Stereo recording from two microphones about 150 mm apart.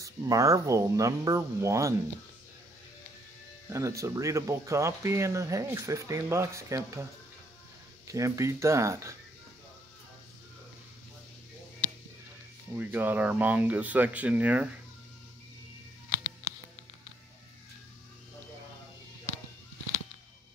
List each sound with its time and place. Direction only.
0.0 s speech: 20° right (ahead or behind)
3.6 s speech: 20° right (ahead or behind)
8.1 s speech: 20° right (ahead or behind)
12.7 s speech: 10° right (ahead or behind)